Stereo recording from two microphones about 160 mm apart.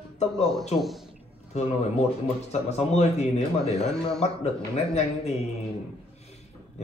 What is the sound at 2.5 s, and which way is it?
A man's voice, 40° left (ahead or behind).